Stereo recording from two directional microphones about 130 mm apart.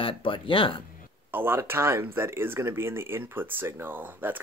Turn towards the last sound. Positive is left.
turn(degrees=-15)  # may be behind; listen again after turning